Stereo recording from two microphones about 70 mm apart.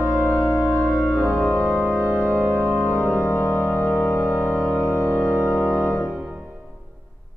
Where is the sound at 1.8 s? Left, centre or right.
Right.